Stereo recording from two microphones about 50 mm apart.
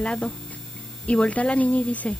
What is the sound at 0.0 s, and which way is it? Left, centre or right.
Speech, left.